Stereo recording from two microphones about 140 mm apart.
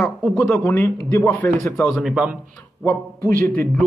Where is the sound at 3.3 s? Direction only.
90° right.